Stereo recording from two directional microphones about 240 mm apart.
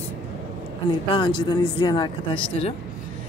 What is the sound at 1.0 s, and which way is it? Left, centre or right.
Speech, centre.